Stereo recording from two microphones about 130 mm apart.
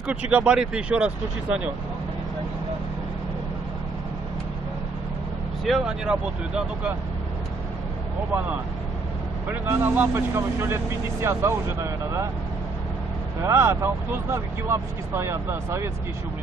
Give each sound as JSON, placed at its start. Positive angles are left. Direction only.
{"t": 0.0, "sound": "speech", "side_deg": -10}
{"t": 5.7, "sound": "speech", "side_deg": -5}
{"t": 9.5, "sound": "speech", "side_deg": -15}
{"t": 13.4, "sound": "speech", "side_deg": -20}